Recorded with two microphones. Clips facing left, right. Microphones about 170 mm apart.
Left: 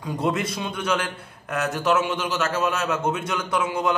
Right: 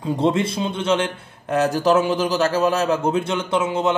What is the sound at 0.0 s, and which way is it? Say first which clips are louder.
A man's voice: right 5 dB; 25° right (ahead or behind).